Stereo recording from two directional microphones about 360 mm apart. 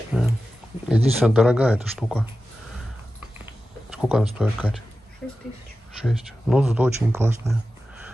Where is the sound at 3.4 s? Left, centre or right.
Centre.